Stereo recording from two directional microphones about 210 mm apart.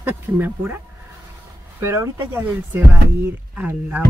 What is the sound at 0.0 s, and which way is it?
Speech, 10° right (ahead or behind).